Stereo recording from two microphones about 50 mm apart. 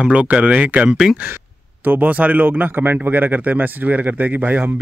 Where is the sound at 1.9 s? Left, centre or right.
Right.